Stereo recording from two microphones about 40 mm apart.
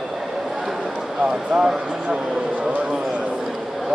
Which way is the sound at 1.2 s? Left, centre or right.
Centre.